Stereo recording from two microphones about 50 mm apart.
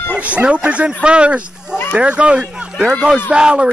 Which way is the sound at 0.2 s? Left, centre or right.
Right.